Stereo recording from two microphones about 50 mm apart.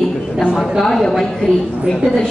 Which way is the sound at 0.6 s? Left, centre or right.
Centre.